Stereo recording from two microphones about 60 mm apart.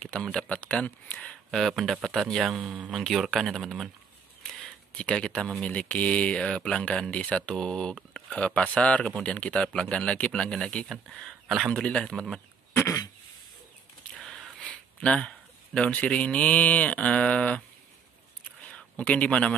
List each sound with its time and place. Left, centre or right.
0.0 s speech: centre
1.5 s speech: centre
2.5 s speech: centre
2.9 s speech: centre
4.4 s a sound: centre
4.9 s speech: centre
11.7 s speech: centre
14.2 s a sound: centre
15.0 s speech: centre
18.7 s speech: left